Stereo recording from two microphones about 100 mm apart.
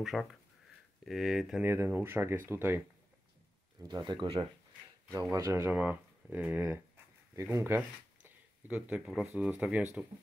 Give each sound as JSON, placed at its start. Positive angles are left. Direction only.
{"t": 0.0, "sound": "speech", "side_deg": 0}
{"t": 1.6, "sound": "speech", "side_deg": -20}
{"t": 3.8, "sound": "speech", "side_deg": -45}
{"t": 5.1, "sound": "speech", "side_deg": -30}
{"t": 5.8, "sound": "speech", "side_deg": -15}
{"t": 9.0, "sound": "speech", "side_deg": -5}